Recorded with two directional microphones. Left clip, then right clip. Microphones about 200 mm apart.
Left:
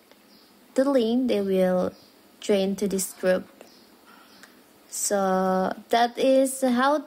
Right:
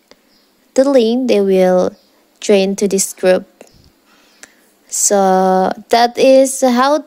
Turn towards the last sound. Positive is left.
turn(degrees=-40)  # may be behind; listen again after turning